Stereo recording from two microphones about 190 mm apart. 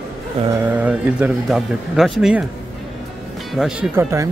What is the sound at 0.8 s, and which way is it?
Speech, 5° right (ahead or behind).